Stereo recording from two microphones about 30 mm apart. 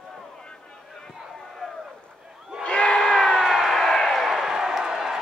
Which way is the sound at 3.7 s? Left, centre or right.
Centre.